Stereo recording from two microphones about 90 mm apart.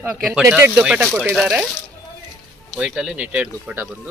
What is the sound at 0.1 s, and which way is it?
Speech, 5° right (ahead or behind).